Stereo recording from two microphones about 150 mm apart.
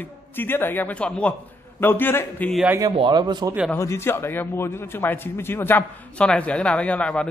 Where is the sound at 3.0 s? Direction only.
30° right (ahead or behind).